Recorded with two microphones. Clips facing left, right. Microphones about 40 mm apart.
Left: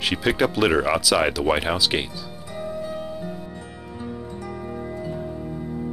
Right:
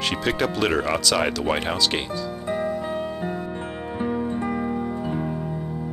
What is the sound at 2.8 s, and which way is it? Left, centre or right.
Music, right.